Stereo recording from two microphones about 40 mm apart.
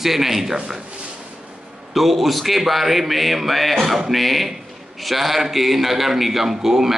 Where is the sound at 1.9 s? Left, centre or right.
Centre.